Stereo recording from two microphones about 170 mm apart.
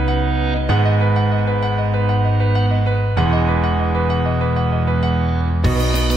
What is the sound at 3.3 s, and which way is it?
Music, centre (ahead or behind).